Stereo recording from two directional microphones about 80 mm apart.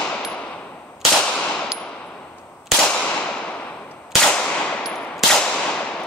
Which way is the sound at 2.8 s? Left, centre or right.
Centre.